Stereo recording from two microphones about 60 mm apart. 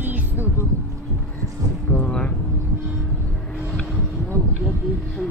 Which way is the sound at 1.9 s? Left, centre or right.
Centre.